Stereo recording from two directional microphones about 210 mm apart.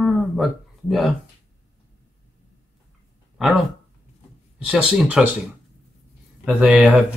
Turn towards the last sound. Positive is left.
turn(degrees=-5)  # may be behind; listen again after turning